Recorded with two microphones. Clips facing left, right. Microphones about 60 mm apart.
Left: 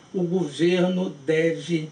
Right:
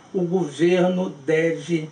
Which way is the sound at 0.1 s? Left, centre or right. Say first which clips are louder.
Right 2 dB; centre.